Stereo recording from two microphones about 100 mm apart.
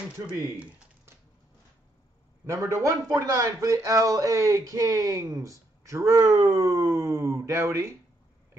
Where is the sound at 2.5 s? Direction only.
35° right (ahead or behind).